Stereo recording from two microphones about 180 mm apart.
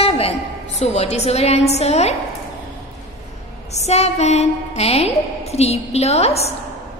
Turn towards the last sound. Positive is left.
turn(degrees=35)  # may be behind; listen again after turning